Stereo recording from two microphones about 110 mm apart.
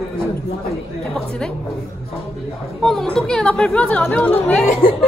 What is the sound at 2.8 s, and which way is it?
Speech, 5° left (ahead or behind).